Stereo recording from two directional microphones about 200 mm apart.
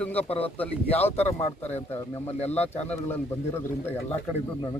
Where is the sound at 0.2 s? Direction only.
30° left (ahead or behind).